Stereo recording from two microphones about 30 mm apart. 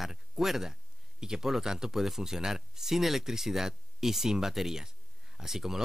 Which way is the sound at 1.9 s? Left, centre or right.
Centre.